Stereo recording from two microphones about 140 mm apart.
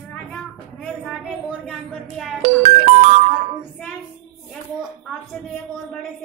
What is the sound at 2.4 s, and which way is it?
Music, 50° right (ahead or behind).